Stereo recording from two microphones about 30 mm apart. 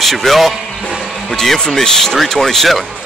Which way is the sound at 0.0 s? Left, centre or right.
Centre.